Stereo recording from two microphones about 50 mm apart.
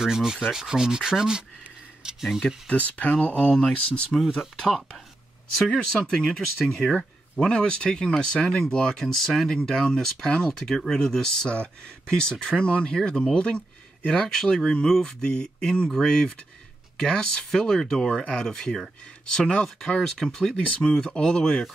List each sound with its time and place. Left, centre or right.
0.0 s sanding: centre
2.4 s speech: left
4.2 s speech: centre
7.3 s speech: centre